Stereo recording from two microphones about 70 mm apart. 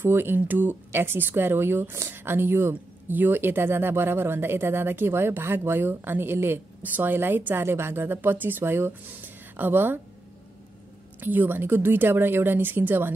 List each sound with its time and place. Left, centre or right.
0.0 s speech: right
11.1 s a woman's voice: right